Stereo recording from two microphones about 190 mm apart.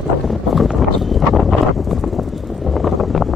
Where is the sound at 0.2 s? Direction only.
Centre (ahead or behind).